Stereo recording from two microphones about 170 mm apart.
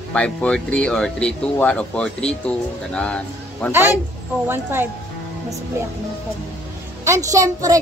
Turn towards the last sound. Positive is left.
turn(degrees=-20)  # may be behind; listen again after turning